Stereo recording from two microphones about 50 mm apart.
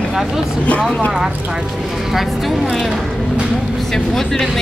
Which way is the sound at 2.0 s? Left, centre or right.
Centre.